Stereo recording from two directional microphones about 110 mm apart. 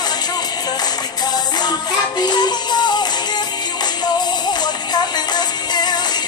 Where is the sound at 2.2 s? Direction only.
40° left (ahead or behind).